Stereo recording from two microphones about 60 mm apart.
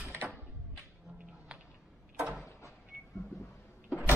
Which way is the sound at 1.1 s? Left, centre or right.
Right.